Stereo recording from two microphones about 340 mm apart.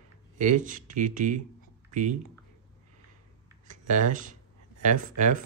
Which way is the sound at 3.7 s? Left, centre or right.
Right.